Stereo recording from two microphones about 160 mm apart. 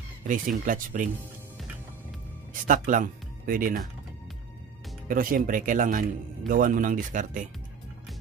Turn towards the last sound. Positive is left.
turn(degrees=-55)  # may be behind; listen again after turning